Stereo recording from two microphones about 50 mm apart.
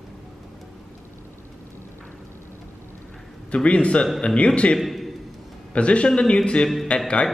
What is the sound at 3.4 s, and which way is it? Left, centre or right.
A man's voice, left.